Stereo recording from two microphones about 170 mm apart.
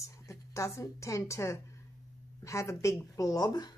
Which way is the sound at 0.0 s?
20° left (ahead or behind).